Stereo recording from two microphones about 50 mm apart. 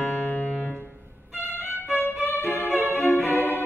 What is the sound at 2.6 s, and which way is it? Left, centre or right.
Violin, right.